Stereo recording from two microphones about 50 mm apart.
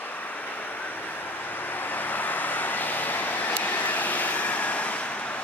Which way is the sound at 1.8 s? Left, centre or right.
Left.